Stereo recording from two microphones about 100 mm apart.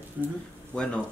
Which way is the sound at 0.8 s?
10° left (ahead or behind).